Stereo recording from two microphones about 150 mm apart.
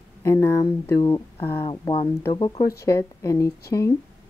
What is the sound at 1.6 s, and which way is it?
Speech, 35° left (ahead or behind).